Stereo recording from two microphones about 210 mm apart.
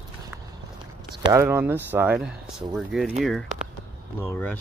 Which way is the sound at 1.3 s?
10° right (ahead or behind).